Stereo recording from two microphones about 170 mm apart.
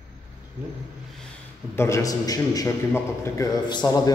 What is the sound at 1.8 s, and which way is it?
A man's voice, 15° left (ahead or behind).